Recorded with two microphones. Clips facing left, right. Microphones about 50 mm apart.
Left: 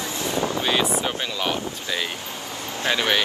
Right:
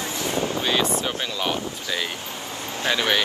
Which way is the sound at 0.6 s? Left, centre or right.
Centre.